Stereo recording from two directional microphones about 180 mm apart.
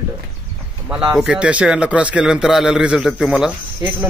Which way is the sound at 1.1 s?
5° right (ahead or behind).